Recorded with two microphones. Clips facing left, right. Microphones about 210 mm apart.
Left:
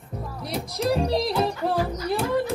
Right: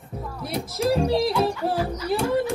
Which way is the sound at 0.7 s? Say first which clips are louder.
Right 2 dB; centre (ahead or behind).